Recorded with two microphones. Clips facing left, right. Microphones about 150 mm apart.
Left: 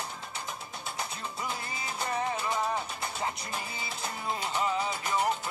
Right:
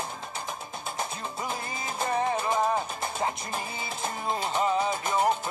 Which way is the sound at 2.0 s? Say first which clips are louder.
Right 5 dB; 50° right (ahead or behind).